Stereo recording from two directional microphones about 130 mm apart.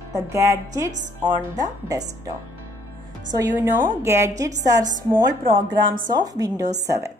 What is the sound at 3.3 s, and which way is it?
A woman's voice, 20° right (ahead or behind).